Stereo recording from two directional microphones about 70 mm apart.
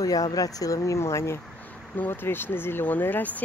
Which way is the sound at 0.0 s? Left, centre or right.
Left.